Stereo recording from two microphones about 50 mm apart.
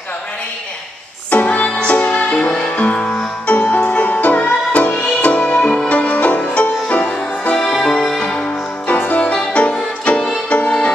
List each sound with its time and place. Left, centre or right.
1.3 s music: left
7.5 s music: centre
8.8 s music: left
9.2 s music: left